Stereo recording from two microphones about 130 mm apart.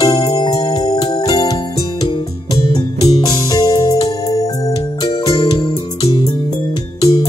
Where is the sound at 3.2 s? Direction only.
30° left (ahead or behind).